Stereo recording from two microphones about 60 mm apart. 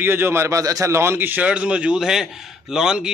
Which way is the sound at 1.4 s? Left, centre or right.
Right.